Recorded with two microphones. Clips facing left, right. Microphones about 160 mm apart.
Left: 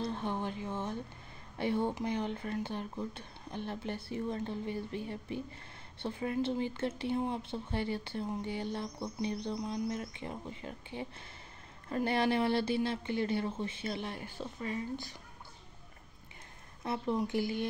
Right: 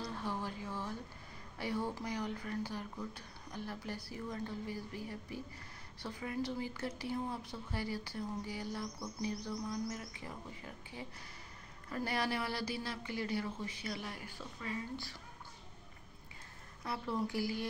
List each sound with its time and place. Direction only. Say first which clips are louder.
0.0 s speech: left 5 dB; 20° left (ahead or behind)
16.8 s speech: left 4 dB; 20° left (ahead or behind)